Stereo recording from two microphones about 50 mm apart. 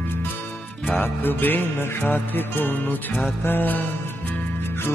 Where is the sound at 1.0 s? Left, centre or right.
Left.